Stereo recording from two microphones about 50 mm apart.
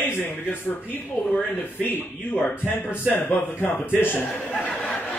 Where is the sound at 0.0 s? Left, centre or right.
Left.